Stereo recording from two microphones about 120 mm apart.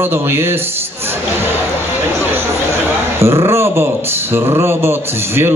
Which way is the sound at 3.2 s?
20° right (ahead or behind).